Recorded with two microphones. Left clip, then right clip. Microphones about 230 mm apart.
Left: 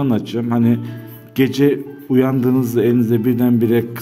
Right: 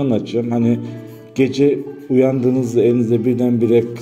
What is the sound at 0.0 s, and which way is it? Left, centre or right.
A man's voice, left.